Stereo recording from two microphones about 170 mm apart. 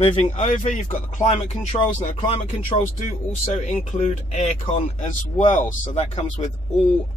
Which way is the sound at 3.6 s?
40° left (ahead or behind).